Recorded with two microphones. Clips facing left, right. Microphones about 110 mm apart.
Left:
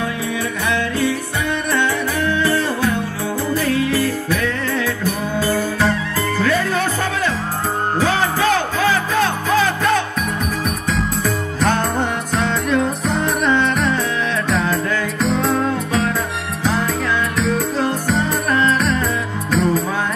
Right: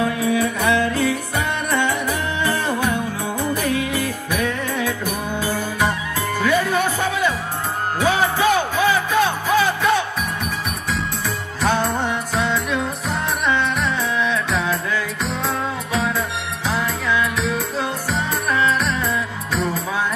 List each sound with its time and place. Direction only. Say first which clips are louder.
0.3 s music: right 4 dB; 25° right (ahead or behind)
10.9 s music: left 4 dB; centre (ahead or behind)
17.4 s music: left 4 dB; centre (ahead or behind)